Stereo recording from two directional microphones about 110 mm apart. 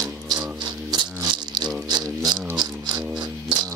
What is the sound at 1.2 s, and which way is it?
Rattle, 40° right (ahead or behind).